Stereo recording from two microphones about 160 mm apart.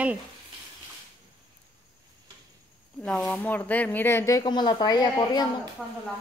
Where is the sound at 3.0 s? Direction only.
5° left (ahead or behind).